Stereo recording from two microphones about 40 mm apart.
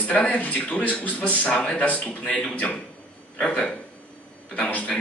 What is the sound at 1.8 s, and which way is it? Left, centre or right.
Speech, left.